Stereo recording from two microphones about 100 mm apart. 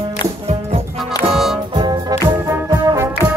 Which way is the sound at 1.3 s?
5° right (ahead or behind).